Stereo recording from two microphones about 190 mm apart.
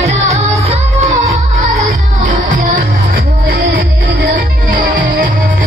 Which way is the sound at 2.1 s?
40° right (ahead or behind).